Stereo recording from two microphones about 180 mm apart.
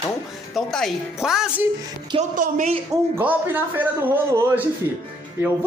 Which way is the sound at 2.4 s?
40° right (ahead or behind).